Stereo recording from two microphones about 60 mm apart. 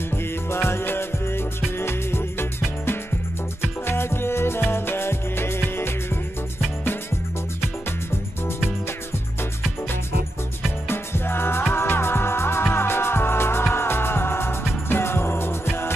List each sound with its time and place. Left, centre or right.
0.1 s music: left
3.8 s music: left
10.9 s music: left